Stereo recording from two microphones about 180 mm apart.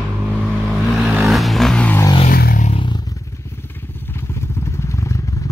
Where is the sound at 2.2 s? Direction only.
55° left (ahead or behind).